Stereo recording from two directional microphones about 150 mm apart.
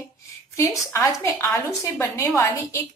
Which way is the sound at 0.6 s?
20° left (ahead or behind).